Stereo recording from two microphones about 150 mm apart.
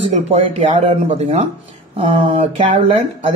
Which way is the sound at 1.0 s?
40° right (ahead or behind).